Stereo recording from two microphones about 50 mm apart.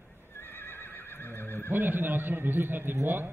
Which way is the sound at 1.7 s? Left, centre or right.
Right.